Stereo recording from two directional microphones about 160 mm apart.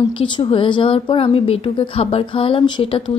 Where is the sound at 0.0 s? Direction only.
30° left (ahead or behind).